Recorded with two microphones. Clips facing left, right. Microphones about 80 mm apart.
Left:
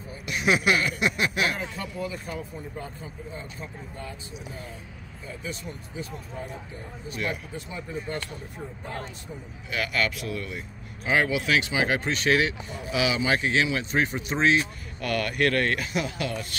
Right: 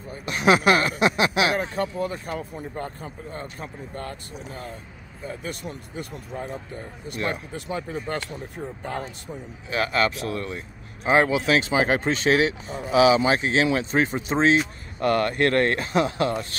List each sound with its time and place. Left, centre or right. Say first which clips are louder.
0.2 s speech: right 5 dB; right
5.3 s speech: right 2 dB; right
7.2 s speech: right 5 dB; right
9.7 s speech: right 5 dB; right
11.1 s speech: right 4 dB; right
12.3 s speech: right 2 dB; right